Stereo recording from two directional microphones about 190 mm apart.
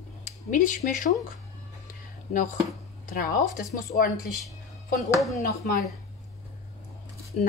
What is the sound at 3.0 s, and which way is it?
Speech, 45° left (ahead or behind).